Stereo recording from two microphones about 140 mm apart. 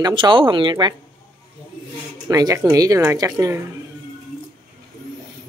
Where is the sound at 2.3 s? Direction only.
25° right (ahead or behind).